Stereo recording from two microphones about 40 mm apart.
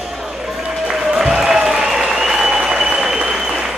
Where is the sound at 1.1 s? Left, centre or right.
Centre.